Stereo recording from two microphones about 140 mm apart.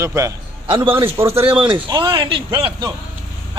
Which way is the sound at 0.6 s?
40° right (ahead or behind).